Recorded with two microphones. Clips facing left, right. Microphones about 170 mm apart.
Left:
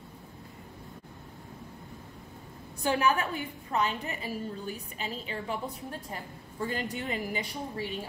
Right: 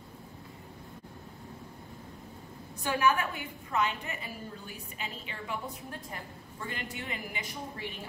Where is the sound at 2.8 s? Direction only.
35° left (ahead or behind).